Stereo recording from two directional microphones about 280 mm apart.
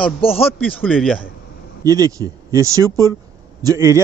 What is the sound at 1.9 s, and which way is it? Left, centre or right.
Speech, centre.